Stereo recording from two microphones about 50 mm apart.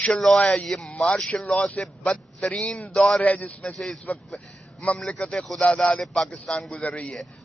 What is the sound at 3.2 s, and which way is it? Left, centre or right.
A man's voice, left.